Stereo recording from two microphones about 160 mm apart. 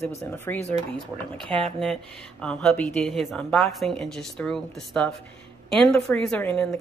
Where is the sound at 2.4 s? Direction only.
5° left (ahead or behind).